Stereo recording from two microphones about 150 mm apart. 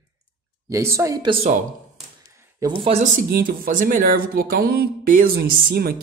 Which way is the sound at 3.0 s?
65° right (ahead or behind).